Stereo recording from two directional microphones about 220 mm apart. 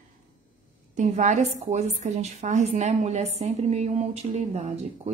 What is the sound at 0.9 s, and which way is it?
A woman's voice, 35° right (ahead or behind).